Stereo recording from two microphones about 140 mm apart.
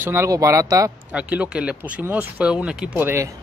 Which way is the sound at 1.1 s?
10° right (ahead or behind).